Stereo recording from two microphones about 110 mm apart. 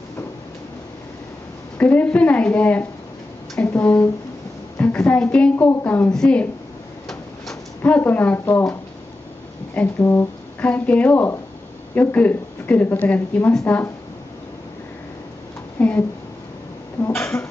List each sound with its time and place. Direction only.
1.8 s a woman's voice: 15° left (ahead or behind)
6.0 s speech: 10° left (ahead or behind)
7.8 s speech: 15° left (ahead or behind)
9.8 s speech: 20° left (ahead or behind)
15.8 s speech: 15° left (ahead or behind)
17.0 s cough: 25° left (ahead or behind)